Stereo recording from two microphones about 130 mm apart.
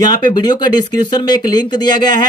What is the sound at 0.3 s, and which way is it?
Speech, 30° left (ahead or behind).